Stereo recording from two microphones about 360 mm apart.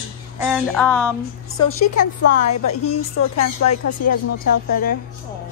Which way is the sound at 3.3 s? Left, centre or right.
Left.